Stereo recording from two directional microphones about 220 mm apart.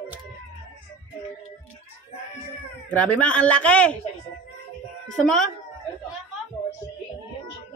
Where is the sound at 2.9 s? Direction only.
5° left (ahead or behind).